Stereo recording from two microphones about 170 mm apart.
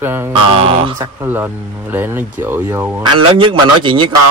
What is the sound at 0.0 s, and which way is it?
Speech, 15° right (ahead or behind).